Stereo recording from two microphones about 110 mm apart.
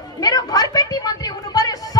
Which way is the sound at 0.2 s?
35° left (ahead or behind).